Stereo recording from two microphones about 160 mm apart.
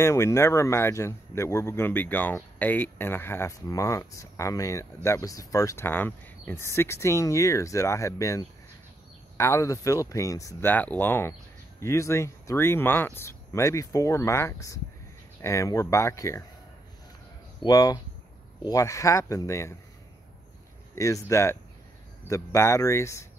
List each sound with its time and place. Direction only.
0.0 s speech: 15° left (ahead or behind)
17.6 s speech: 25° left (ahead or behind)
20.9 s speech: 20° left (ahead or behind)